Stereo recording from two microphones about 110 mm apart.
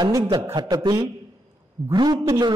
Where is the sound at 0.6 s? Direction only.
40° right (ahead or behind).